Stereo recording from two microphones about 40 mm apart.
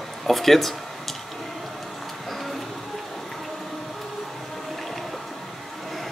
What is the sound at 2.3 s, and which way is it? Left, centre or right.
Music, centre.